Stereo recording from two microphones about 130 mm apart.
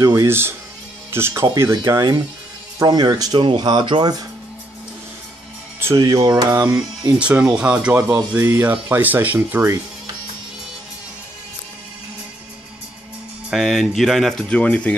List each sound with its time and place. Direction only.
0.0 s speech: 25° right (ahead or behind)
5.8 s speech: 25° right (ahead or behind)
7.2 s rub: 10° right (ahead or behind)
13.5 s speech: centre (ahead or behind)